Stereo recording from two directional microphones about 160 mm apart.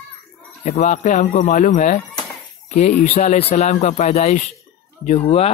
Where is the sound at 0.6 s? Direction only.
45° left (ahead or behind).